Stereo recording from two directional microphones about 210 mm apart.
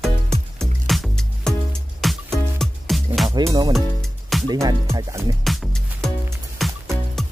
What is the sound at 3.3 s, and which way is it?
Music, 20° right (ahead or behind).